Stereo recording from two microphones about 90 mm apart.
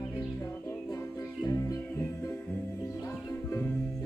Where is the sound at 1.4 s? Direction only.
35° left (ahead or behind).